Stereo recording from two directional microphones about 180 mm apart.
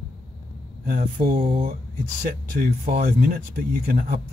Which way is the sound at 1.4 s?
30° right (ahead or behind).